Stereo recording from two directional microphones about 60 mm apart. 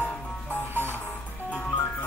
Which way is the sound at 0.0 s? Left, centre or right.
Left.